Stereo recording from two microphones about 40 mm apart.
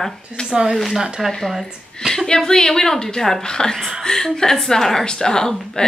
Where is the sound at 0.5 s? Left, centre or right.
Centre.